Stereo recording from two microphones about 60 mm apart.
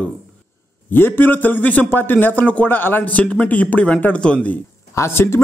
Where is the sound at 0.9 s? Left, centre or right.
Left.